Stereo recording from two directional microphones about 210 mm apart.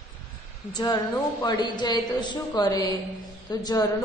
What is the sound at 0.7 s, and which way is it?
A woman's voice, 20° left (ahead or behind).